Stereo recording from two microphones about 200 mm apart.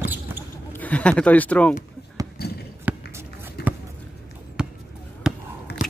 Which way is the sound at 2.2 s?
15° right (ahead or behind).